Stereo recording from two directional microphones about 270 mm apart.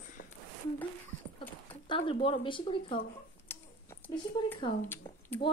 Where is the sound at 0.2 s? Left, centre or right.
Left.